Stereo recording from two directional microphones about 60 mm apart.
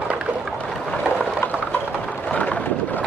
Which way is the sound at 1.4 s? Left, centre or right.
Left.